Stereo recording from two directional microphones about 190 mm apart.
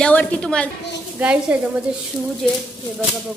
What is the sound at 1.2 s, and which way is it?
A woman's voice, 5° right (ahead or behind).